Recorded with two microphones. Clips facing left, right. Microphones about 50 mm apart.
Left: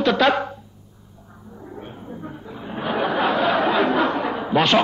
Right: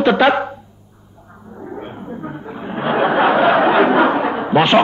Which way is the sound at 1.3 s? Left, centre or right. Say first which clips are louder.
Right 7 dB; right.